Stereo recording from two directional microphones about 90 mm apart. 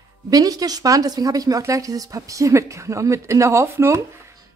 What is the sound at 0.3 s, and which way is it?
A woman's voice, 40° right (ahead or behind).